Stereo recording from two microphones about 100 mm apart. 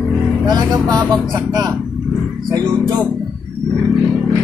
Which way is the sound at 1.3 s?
40° right (ahead or behind).